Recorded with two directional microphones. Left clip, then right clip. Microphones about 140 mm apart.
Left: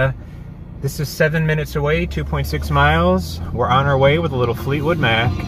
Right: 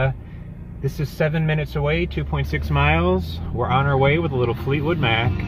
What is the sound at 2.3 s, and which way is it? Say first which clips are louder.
Speech: left 4 dB; 10° left (ahead or behind).